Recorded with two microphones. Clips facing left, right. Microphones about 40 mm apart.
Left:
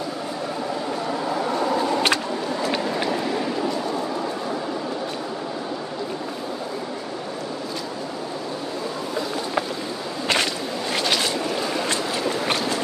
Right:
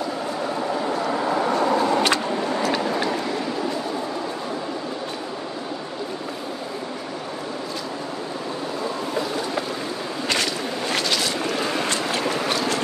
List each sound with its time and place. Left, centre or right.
2.1 s vehicle: centre